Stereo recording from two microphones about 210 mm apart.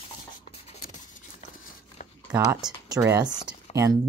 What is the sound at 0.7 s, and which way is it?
Writing, 45° left (ahead or behind).